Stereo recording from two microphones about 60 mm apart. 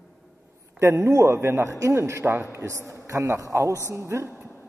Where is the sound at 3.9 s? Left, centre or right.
Right.